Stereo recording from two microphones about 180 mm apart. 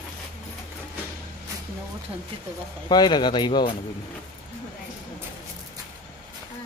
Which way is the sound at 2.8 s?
25° left (ahead or behind).